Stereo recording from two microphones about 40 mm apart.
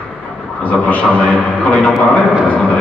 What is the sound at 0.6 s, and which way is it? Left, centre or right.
Speech, left.